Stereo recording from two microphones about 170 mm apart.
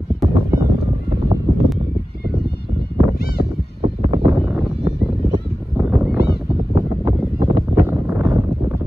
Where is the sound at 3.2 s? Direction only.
65° left (ahead or behind).